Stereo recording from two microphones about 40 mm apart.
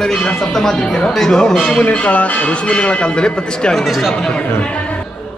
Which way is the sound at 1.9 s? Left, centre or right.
Left.